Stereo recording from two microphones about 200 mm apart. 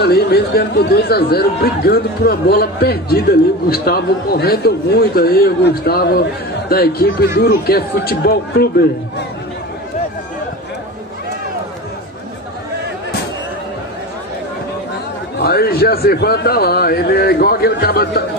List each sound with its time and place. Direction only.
0.0 s speech: 55° left (ahead or behind)
15.3 s speech: 50° left (ahead or behind)